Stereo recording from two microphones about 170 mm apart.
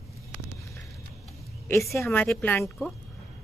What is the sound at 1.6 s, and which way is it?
A woman's voice, 15° left (ahead or behind).